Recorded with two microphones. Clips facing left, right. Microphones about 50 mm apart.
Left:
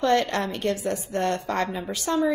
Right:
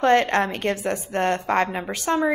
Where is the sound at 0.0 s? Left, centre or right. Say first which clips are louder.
Right 4 dB; right.